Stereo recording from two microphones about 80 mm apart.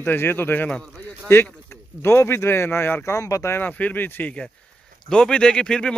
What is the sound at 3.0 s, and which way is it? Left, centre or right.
Speech, left.